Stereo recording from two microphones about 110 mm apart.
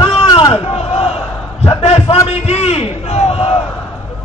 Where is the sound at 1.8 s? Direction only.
65° left (ahead or behind).